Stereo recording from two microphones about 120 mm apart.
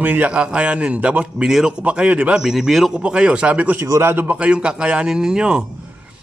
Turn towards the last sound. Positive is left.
turn(degrees=-5)  # may be behind; listen again after turning